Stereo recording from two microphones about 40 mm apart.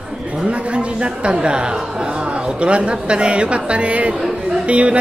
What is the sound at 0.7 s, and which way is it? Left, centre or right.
Speech, right.